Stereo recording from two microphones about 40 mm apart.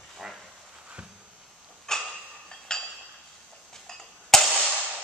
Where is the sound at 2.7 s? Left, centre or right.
Centre.